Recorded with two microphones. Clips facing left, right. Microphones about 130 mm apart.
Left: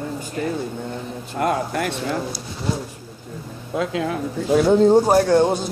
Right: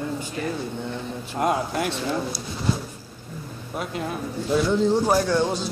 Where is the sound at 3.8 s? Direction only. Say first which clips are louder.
Left 6 dB; 90° left.